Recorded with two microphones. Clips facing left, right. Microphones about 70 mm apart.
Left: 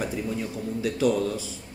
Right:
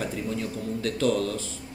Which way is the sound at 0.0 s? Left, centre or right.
Centre.